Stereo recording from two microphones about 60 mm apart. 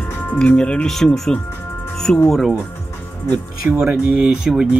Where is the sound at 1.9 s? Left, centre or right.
Centre.